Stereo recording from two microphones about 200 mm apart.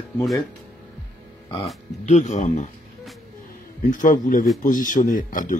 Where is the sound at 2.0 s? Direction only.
35° left (ahead or behind).